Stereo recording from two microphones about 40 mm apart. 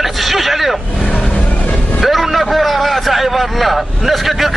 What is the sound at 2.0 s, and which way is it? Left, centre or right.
A man's voice, centre.